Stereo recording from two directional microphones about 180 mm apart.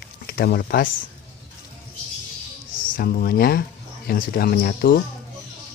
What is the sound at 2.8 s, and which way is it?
Speech, 55° left (ahead or behind).